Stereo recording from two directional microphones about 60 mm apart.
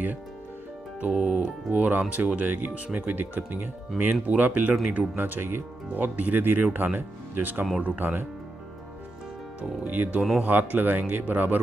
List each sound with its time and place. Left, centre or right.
1.1 s speech: centre
9.6 s speech: right